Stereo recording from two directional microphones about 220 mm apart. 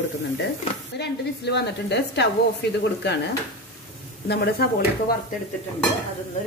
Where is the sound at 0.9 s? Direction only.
50° left (ahead or behind).